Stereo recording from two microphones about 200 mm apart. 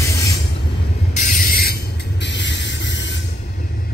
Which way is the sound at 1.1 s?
45° left (ahead or behind).